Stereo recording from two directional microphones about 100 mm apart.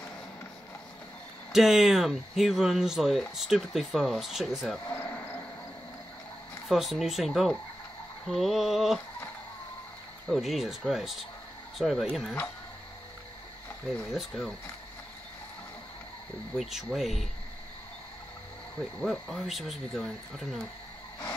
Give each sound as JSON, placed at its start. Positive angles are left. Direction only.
{"t": 1.5, "sound": "speech", "side_deg": 0}
{"t": 4.8, "sound": "a sound", "side_deg": 20}
{"t": 6.7, "sound": "speech", "side_deg": 0}
{"t": 10.2, "sound": "speech", "side_deg": 0}
{"t": 14.1, "sound": "speech", "side_deg": 0}
{"t": 16.5, "sound": "speech", "side_deg": -5}
{"t": 19.0, "sound": "speech", "side_deg": 0}